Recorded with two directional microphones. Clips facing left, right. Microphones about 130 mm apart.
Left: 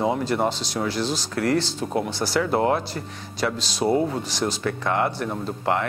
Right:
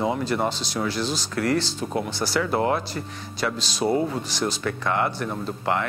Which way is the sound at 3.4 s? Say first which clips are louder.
Left 2 dB; 40° left (ahead or behind).